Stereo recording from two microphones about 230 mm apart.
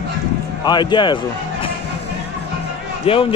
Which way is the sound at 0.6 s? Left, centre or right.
Centre.